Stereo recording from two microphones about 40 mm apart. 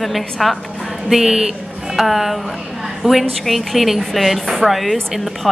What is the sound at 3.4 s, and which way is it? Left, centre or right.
A woman's voice, centre.